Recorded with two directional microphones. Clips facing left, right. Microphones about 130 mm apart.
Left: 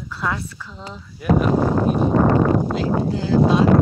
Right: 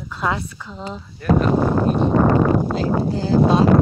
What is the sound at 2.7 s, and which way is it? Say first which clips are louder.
Speech: right 1 dB; 35° right (ahead or behind).